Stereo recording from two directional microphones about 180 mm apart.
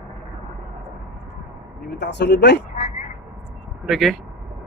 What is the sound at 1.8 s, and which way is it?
Speech, 70° left (ahead or behind).